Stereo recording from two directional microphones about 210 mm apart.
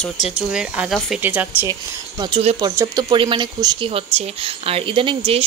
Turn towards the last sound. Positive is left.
turn(degrees=-25)  # may be behind; listen again after turning